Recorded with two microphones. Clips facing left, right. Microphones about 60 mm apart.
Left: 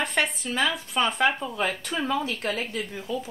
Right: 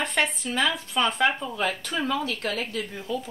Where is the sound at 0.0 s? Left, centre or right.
Centre.